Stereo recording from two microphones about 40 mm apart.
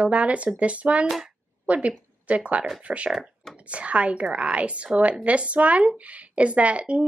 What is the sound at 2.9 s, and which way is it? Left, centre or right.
Speech, right.